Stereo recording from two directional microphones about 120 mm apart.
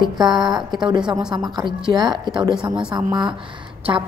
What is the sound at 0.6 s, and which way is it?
Speech, 5° right (ahead or behind).